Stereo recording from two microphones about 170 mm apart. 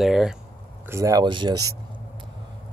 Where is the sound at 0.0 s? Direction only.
Centre (ahead or behind).